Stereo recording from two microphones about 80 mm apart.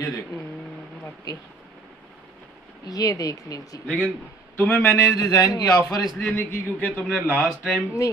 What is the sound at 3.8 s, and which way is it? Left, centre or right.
A man's voice, centre.